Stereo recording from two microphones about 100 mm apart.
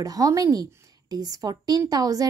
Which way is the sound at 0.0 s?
35° right (ahead or behind).